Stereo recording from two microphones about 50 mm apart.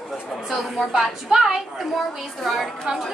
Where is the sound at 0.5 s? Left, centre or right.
Centre.